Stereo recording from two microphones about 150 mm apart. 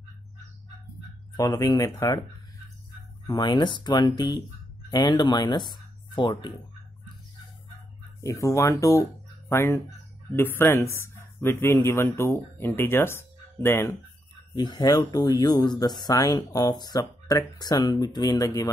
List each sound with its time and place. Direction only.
1.3 s speech: 25° left (ahead or behind)
3.3 s speech: 30° left (ahead or behind)
8.2 s speech: 20° left (ahead or behind)
14.5 s speech: 30° left (ahead or behind)